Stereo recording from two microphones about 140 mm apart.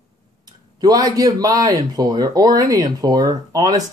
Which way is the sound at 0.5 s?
30° right (ahead or behind).